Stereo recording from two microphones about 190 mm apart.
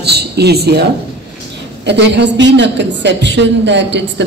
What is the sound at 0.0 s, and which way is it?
Speech, 60° right (ahead or behind).